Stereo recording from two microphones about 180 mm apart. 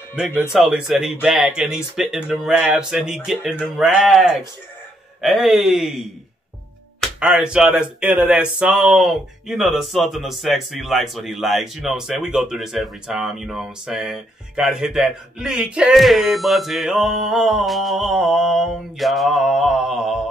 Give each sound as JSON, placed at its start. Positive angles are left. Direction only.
{"t": 0.5, "sound": "speech", "side_deg": -5}
{"t": 7.0, "sound": "speech", "side_deg": -5}